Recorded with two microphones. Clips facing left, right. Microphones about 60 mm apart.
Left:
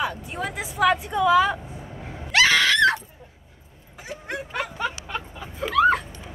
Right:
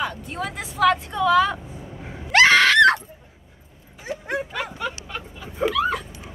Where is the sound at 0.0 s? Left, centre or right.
Centre.